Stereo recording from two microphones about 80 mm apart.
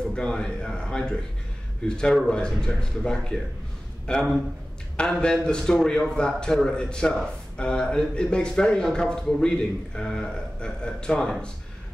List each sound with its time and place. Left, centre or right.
0.0 s a man's voice: centre